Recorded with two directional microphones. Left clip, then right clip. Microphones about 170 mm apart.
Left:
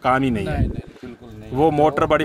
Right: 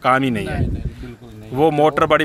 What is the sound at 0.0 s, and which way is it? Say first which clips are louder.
Speech: right 2 dB; centre (ahead or behind).